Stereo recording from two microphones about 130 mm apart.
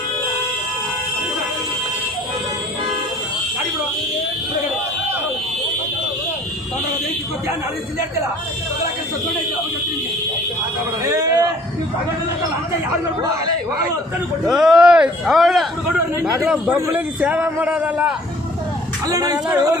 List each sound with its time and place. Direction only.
11.1 s a sound: 25° right (ahead or behind)
14.4 s speech: 5° right (ahead or behind)
16.7 s a man's voice: 15° right (ahead or behind)
19.0 s speech: 30° right (ahead or behind)